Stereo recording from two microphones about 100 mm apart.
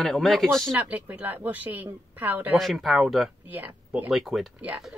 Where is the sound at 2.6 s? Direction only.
Centre (ahead or behind).